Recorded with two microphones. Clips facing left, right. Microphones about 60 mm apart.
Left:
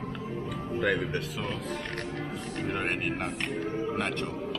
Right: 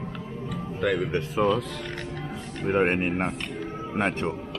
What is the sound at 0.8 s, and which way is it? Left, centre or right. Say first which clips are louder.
Speech: right 3 dB; centre.